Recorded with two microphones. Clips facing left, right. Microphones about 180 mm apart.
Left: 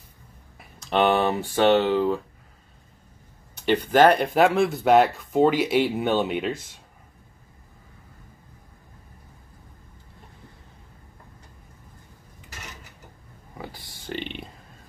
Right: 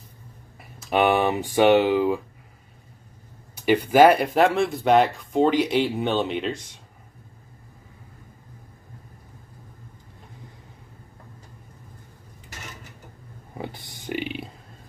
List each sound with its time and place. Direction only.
0.6 s speech: 5° right (ahead or behind)
3.5 s speech: 10° right (ahead or behind)
13.6 s a sound: 20° right (ahead or behind); by 14.5 s 5° right (ahead or behind)